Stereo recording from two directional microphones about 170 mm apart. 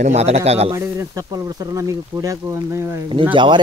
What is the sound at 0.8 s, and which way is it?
Speech, 20° right (ahead or behind).